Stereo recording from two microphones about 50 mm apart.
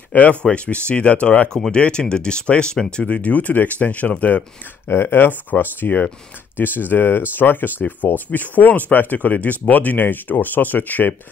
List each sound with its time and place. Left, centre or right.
0.1 s speech: left
3.1 s speech: left
4.8 s speech: left
7.8 s speech: left